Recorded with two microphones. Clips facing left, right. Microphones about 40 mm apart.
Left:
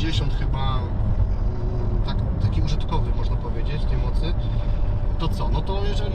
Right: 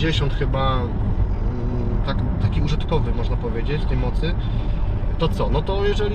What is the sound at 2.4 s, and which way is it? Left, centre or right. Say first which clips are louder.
Speech: right 3 dB; right.